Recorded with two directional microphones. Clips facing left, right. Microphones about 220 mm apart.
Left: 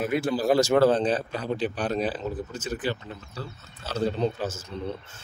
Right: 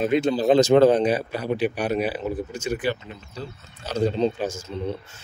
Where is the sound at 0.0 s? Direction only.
20° right (ahead or behind).